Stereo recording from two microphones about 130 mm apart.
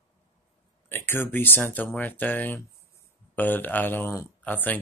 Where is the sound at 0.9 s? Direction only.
15° left (ahead or behind).